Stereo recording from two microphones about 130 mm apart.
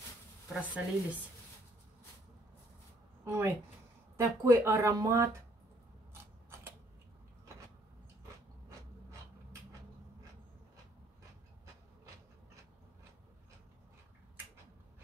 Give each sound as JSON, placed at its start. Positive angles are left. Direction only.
{"t": 0.5, "sound": "speech", "side_deg": -10}
{"t": 3.3, "sound": "speech", "side_deg": -20}